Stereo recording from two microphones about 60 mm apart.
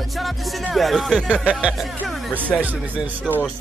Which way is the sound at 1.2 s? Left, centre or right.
Centre.